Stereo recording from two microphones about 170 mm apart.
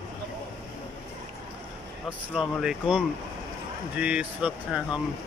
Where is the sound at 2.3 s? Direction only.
5° right (ahead or behind).